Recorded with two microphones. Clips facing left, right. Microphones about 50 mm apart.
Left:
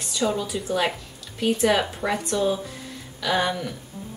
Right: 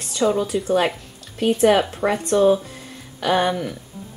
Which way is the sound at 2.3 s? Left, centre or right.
Right.